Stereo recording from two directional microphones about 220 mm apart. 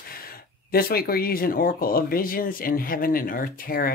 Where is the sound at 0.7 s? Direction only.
45° left (ahead or behind).